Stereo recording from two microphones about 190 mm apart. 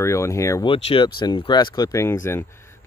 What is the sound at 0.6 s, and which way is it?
Speech, 30° left (ahead or behind).